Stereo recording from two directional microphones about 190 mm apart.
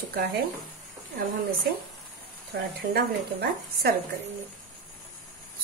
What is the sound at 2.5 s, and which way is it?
Speech, 55° right (ahead or behind).